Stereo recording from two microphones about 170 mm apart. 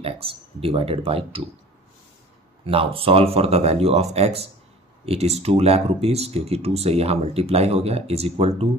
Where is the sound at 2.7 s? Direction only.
30° right (ahead or behind).